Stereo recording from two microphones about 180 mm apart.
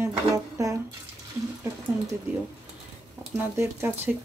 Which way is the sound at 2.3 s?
15° right (ahead or behind).